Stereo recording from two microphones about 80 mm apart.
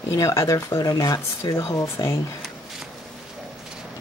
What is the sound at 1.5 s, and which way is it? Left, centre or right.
Speech, left.